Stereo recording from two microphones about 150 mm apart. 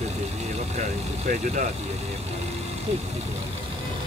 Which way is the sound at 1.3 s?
60° right (ahead or behind).